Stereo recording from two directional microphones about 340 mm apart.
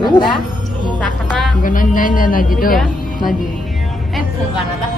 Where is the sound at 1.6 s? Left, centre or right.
Left.